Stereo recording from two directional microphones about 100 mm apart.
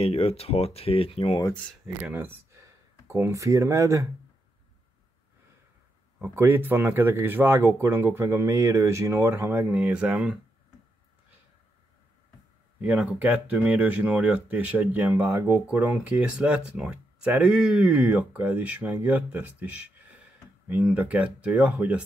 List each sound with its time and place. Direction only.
0.0 s speech: 85° left
2.5 s a sound: 30° right (ahead or behind)
6.2 s speech: 20° right (ahead or behind)
12.8 s speech: 10° right (ahead or behind)